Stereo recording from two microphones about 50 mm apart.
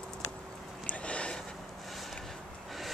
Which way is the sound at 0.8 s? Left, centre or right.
Left.